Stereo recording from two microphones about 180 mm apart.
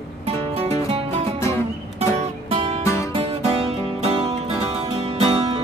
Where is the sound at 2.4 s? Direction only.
30° right (ahead or behind).